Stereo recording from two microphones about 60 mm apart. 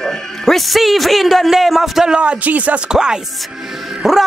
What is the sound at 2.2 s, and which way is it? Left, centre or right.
Speech, right.